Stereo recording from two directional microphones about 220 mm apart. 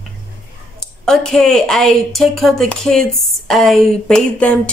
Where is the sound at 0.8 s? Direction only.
5° left (ahead or behind).